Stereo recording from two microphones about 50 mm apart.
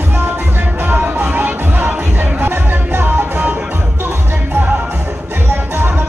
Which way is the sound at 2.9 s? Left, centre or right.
Right.